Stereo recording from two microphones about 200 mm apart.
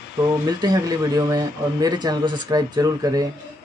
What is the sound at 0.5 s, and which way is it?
Speech, 20° right (ahead or behind).